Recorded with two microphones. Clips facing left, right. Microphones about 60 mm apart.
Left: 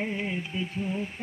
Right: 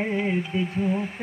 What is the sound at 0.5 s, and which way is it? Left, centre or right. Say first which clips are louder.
Speech: right 6 dB; right.